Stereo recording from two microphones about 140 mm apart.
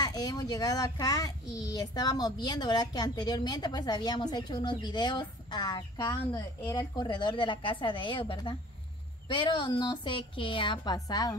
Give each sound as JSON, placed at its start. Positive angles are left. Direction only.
{"t": 0.0, "sound": "a child's voice", "side_deg": 30}